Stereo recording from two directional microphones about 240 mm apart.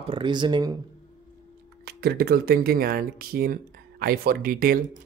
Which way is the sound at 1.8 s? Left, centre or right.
Right.